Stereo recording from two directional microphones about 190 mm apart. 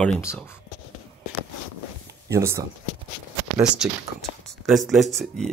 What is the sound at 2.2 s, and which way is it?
Speech, 15° right (ahead or behind).